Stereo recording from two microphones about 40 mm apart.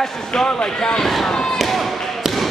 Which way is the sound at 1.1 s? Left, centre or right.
Centre.